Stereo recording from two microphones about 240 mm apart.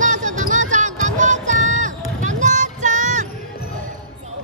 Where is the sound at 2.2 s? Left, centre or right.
Right.